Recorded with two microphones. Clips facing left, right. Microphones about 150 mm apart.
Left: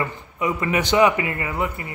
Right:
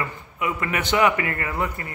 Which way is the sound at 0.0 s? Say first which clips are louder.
Left 3 dB; 20° left (ahead or behind).